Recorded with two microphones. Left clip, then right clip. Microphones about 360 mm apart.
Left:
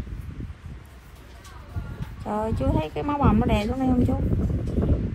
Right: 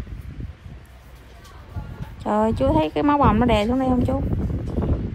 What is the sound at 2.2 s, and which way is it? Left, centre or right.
Speech, right.